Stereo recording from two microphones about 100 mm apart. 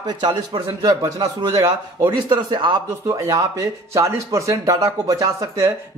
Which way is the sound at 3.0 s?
35° right (ahead or behind).